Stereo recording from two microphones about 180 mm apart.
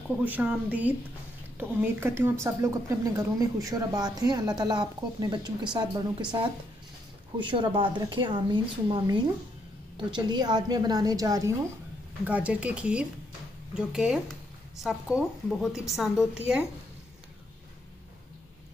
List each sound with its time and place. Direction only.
0.1 s speech: 10° right (ahead or behind); by 6.0 s 25° right (ahead or behind)
7.3 s speech: 25° right (ahead or behind)
12.3 s a woman's voice: 5° right (ahead or behind)